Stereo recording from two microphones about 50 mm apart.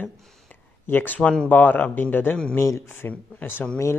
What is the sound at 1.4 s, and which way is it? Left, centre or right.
Speech, left.